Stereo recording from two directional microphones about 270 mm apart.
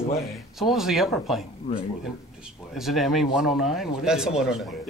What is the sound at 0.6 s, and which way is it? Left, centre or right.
Speech, centre.